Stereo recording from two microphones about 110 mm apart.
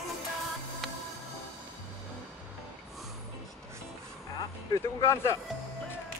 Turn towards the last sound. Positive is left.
turn(degrees=30)  # may be behind; listen again after turning